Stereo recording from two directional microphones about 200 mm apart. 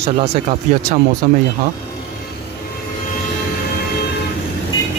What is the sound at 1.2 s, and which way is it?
Speech, 40° right (ahead or behind).